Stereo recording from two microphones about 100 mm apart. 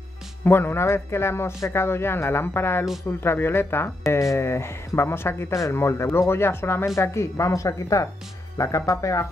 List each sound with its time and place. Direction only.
0.5 s speech: 25° left (ahead or behind)